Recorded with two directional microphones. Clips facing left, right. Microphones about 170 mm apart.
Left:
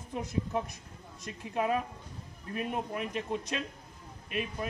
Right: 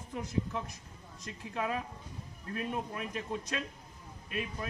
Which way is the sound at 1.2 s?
25° left (ahead or behind).